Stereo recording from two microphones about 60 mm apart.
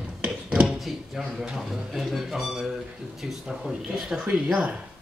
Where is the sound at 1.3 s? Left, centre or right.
Centre.